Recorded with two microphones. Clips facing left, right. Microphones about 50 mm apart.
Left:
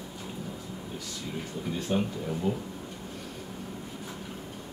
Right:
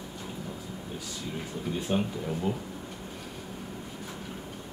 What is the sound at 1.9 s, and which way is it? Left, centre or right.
Speech, centre.